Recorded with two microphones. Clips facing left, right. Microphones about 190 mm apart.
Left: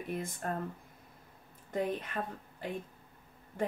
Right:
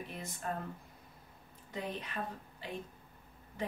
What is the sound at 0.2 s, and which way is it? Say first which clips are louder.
Speech: left 5 dB; 50° left (ahead or behind).